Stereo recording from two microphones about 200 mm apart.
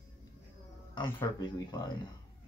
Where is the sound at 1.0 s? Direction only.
15° left (ahead or behind).